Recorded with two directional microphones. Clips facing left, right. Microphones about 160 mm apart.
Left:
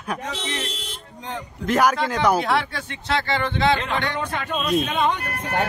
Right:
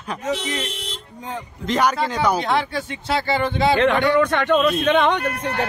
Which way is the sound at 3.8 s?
75° right (ahead or behind).